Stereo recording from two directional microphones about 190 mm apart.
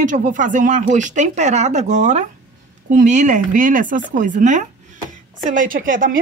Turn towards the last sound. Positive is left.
turn(degrees=-45)  # may be behind; listen again after turning